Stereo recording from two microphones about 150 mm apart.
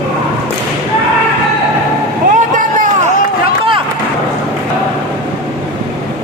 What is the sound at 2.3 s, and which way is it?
Vehicle, 60° right (ahead or behind).